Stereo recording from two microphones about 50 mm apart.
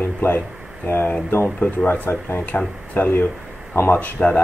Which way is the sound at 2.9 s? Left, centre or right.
Left.